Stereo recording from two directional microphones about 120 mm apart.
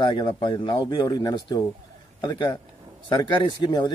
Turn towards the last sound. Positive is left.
turn(degrees=40)  # may be behind; listen again after turning